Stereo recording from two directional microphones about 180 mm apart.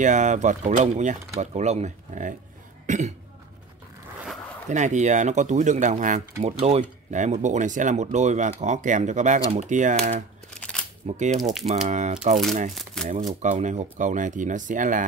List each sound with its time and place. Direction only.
0.0 s speech: 45° right (ahead or behind)
4.6 s speech: 40° right (ahead or behind)
12.7 s speech: 5° left (ahead or behind)
13.4 s speech: 45° right (ahead or behind)